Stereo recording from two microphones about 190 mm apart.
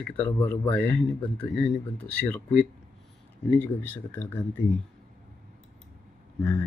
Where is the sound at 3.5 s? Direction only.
10° left (ahead or behind).